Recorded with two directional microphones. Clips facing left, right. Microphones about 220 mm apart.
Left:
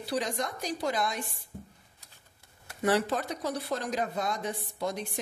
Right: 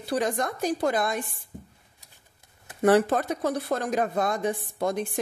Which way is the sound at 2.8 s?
50° right (ahead or behind).